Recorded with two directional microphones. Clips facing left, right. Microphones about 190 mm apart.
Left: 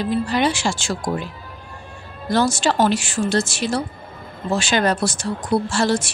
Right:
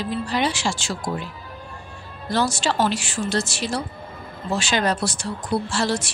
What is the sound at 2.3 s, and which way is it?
A woman's voice, 45° left (ahead or behind).